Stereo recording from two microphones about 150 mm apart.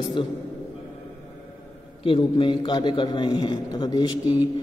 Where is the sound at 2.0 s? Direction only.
35° left (ahead or behind).